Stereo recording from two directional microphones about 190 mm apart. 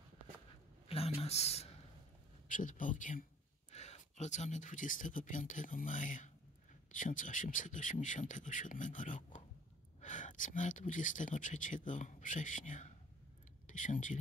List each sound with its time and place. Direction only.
0.8 s speech: 30° left (ahead or behind)
2.4 s speech: 45° left (ahead or behind)